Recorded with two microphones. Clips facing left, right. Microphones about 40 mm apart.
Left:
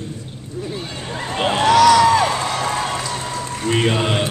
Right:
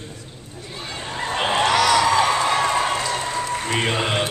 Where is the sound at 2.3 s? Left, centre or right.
Right.